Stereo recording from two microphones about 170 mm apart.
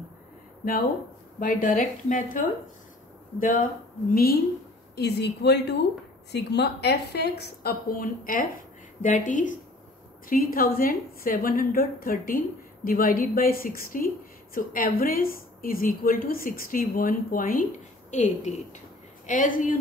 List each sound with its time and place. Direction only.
1.4 s a woman's voice: 55° left (ahead or behind)
4.9 s a woman's voice: 75° left (ahead or behind); by 17.6 s 55° left (ahead or behind)
18.1 s a woman's voice: 45° left (ahead or behind)